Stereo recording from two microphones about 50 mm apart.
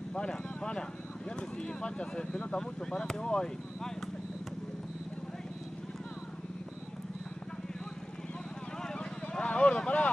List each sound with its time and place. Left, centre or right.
0.1 s a sound: centre
1.3 s speech: centre
8.8 s vehicle: centre